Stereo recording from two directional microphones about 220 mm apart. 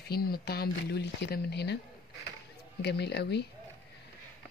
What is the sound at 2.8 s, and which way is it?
Speech, 50° left (ahead or behind).